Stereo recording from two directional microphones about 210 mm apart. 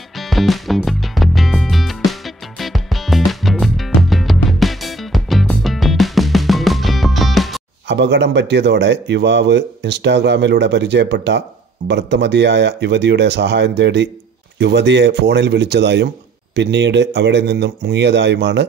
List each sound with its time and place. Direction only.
0.2 s music: centre (ahead or behind)
7.9 s speech: 55° right (ahead or behind)